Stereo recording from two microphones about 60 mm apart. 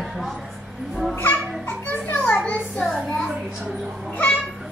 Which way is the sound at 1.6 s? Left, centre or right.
Left.